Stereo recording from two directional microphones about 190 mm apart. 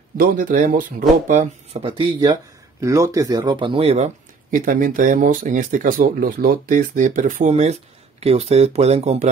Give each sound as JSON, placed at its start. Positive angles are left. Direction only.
{"t": 0.2, "sound": "speech", "side_deg": -45}